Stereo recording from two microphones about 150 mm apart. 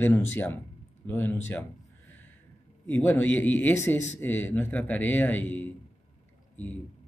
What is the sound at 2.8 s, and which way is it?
Speech, 15° left (ahead or behind).